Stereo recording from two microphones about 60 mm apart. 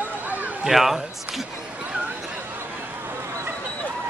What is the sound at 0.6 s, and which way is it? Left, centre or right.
Speech, centre.